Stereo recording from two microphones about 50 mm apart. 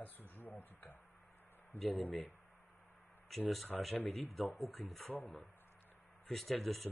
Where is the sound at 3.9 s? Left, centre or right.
Left.